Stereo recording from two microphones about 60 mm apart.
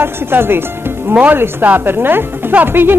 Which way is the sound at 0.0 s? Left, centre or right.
Right.